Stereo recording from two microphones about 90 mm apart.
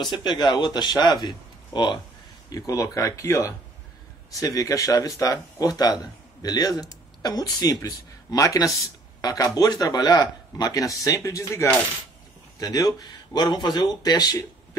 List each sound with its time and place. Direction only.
0.2 s speech: 50° left (ahead or behind)
2.5 s speech: 40° left (ahead or behind)
12.5 s speech: 45° left (ahead or behind)